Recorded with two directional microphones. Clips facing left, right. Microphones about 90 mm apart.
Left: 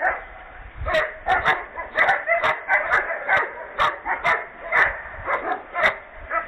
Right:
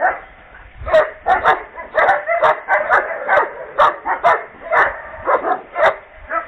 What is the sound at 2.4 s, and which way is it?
Dog, 40° right (ahead or behind).